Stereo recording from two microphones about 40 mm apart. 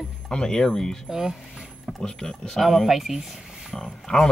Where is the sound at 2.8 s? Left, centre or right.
Centre.